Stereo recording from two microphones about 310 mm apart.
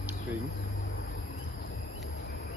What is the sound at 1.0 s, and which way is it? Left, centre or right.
Cricket, left.